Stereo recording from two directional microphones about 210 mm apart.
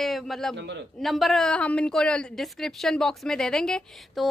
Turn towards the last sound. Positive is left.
turn(degrees=5)  # may be behind; listen again after turning